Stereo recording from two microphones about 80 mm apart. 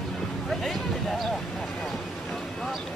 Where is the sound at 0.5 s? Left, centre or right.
Centre.